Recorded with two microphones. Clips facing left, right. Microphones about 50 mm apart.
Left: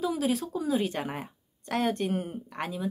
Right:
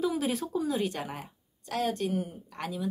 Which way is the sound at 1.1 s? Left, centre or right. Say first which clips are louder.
Left 3 dB; left.